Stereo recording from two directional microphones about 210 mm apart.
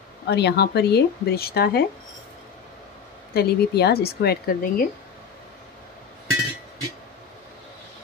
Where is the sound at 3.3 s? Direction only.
50° left (ahead or behind).